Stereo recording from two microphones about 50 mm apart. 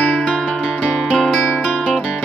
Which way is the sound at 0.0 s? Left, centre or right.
Centre.